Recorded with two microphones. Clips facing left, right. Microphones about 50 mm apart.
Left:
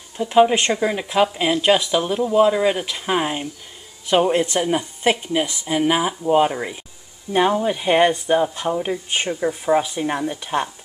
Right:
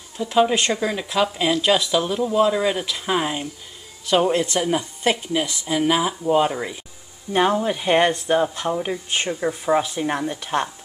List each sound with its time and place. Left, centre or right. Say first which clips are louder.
0.2 s speech: left 3 dB; left; by 10.7 s centre